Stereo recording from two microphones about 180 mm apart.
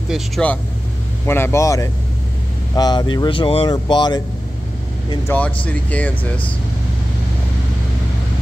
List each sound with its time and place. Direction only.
0.1 s speech: 5° left (ahead or behind); by 4.2 s 25° left (ahead or behind)
5.3 s speech: 10° left (ahead or behind)